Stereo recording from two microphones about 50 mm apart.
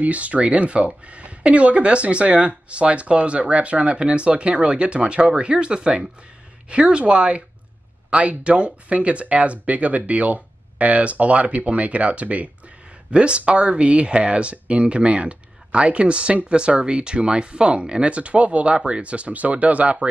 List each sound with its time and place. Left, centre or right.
0.0 s speech: right